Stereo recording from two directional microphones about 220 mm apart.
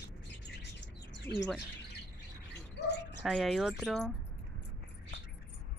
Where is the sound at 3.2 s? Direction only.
Centre (ahead or behind).